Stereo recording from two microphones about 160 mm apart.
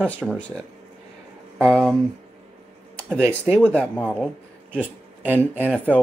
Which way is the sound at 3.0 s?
5° left (ahead or behind).